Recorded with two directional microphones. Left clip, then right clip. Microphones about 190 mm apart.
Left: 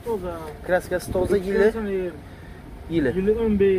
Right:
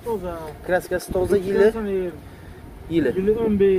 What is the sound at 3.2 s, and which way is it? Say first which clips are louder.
Speech: right 1 dB; 40° right (ahead or behind).